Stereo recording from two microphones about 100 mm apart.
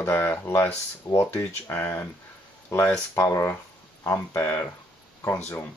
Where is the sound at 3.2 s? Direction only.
25° left (ahead or behind).